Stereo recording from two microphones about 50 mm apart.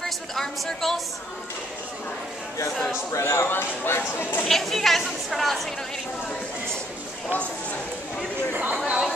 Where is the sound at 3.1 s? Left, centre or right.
Left.